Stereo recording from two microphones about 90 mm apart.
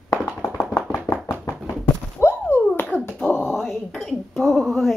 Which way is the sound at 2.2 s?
25° left (ahead or behind).